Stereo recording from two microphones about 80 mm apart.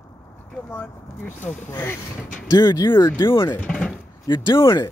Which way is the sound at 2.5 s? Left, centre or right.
Left.